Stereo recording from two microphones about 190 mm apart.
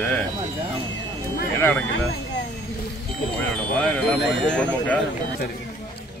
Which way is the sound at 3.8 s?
5° left (ahead or behind).